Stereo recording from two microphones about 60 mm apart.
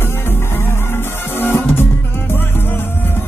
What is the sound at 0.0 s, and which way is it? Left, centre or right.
Music, left.